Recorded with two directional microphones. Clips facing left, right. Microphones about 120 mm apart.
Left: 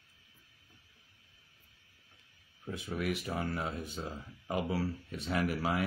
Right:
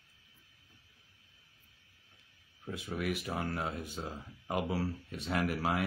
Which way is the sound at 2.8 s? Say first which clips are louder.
Left 1 dB; centre (ahead or behind).